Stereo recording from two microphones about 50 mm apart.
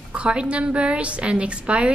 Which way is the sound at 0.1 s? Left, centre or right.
Right.